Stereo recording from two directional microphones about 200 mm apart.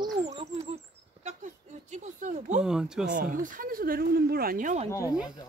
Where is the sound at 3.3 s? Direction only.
45° right (ahead or behind).